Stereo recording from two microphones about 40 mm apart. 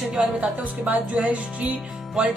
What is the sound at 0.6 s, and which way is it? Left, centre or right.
Speech, right.